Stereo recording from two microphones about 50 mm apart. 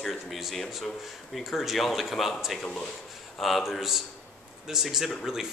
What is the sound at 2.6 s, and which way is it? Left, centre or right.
Speech, centre.